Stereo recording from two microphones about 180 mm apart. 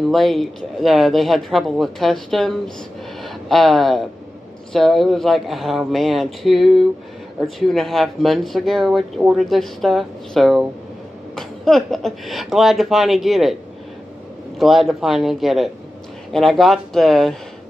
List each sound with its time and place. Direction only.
0.1 s speech: centre (ahead or behind)
3.2 s a sound: centre (ahead or behind)
4.7 s speech: centre (ahead or behind)
14.6 s speech: centre (ahead or behind)